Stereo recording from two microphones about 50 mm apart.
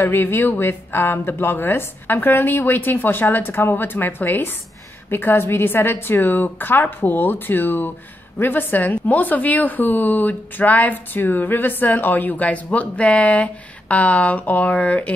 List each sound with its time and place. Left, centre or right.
0.0 s a woman's voice: left